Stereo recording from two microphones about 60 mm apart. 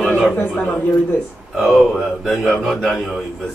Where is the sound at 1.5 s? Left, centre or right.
Centre.